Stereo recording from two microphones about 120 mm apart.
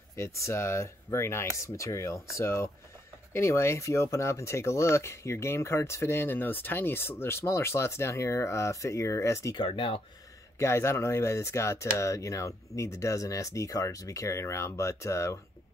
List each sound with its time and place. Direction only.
0.1 s speech: 25° left (ahead or behind)
9.6 s speech: 45° left (ahead or behind)
10.6 s speech: 25° left (ahead or behind)